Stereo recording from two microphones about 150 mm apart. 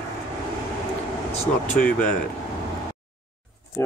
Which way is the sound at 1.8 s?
10° left (ahead or behind).